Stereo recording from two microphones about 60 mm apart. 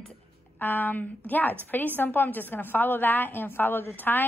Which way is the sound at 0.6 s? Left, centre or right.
Left.